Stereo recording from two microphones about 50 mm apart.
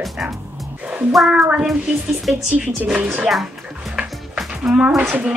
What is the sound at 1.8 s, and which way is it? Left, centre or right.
Speech, centre.